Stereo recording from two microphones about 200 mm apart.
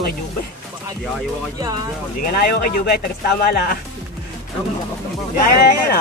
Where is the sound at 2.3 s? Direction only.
50° left (ahead or behind).